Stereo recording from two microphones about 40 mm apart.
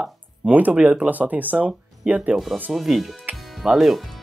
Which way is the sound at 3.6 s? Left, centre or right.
Centre.